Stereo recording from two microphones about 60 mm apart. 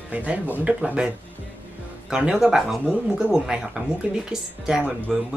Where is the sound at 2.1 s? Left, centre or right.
Centre.